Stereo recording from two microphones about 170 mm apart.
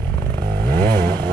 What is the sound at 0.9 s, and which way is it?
Motorcycle, 25° right (ahead or behind).